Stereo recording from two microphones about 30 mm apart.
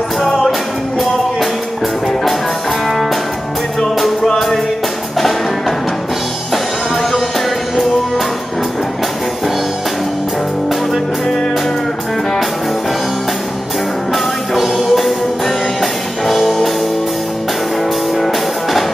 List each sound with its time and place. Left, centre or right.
0.2 s music: centre
0.5 s music: centre
3.8 s music: centre
7.0 s music: centre
14.1 s music: centre
18.1 s music: centre